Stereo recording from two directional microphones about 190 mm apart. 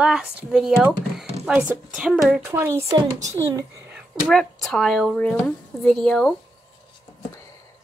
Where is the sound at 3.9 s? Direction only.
Centre (ahead or behind).